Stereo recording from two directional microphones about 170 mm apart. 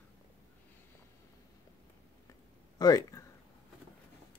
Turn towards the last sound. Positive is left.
turn(degrees=20)  # may be behind; listen again after turning